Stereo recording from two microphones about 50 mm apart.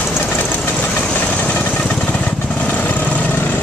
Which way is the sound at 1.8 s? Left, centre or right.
Centre.